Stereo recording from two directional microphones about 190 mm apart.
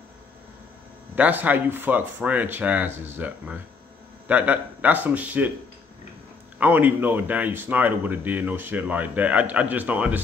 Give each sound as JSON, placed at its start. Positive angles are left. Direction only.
{"t": 1.1, "sound": "a man's voice", "side_deg": -10}
{"t": 6.6, "sound": "a man's voice", "side_deg": -10}